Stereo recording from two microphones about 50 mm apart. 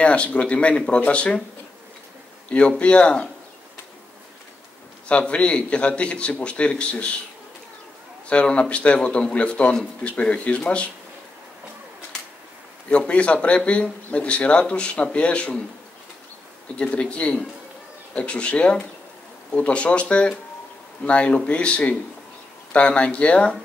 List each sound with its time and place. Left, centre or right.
0.0 s a man's voice: left
2.8 s a man's voice: left
5.0 s a man's voice: left
8.3 s a man's voice: left
12.9 s a man's voice: left
16.7 s a man's voice: left